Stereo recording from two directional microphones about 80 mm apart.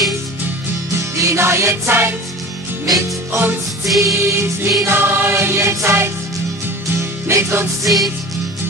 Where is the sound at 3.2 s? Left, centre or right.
Right.